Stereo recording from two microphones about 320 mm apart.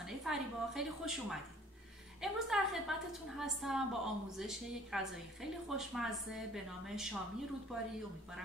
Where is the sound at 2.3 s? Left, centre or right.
Centre.